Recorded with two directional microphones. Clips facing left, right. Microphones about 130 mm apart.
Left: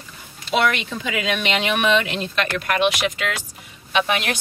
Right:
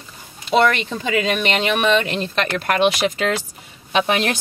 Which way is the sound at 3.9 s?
35° right (ahead or behind).